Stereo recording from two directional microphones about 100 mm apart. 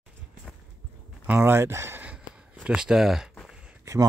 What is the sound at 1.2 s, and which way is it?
Speech, 20° right (ahead or behind).